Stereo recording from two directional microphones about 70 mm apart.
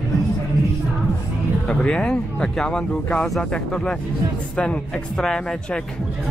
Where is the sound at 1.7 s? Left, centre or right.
Centre.